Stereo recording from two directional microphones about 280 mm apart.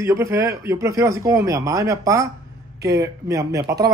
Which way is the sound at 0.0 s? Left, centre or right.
Centre.